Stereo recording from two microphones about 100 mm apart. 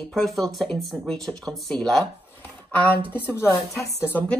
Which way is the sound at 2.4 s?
15° left (ahead or behind).